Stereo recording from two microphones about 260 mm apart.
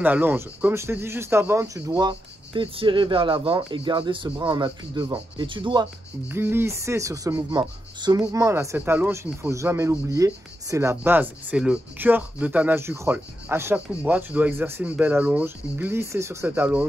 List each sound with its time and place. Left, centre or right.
0.0 s speech: centre